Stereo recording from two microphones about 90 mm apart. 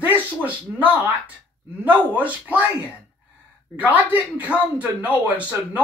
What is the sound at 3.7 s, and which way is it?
Speech, 15° right (ahead or behind).